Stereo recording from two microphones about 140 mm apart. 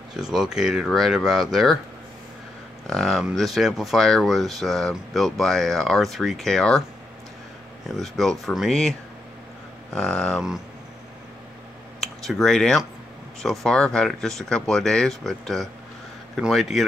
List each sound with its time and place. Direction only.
0.1 s speech: 5° right (ahead or behind)
2.9 s speech: centre (ahead or behind)
8.0 s speech: 5° left (ahead or behind)
9.9 s speech: 5° left (ahead or behind)
12.0 s speech: centre (ahead or behind)